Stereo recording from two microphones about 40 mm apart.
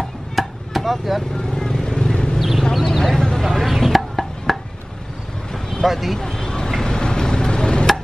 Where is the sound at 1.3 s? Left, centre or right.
Centre.